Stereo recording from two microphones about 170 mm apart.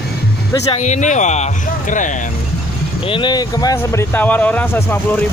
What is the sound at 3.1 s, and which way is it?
Speech, 25° left (ahead or behind).